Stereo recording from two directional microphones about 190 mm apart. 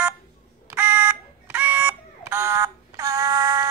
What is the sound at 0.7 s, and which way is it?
Fire alarm, 10° right (ahead or behind).